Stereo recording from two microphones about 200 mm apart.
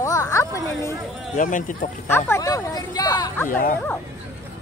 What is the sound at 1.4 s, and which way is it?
Speech, 40° left (ahead or behind).